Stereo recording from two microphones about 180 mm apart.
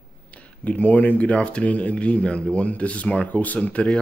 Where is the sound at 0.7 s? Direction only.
10° left (ahead or behind).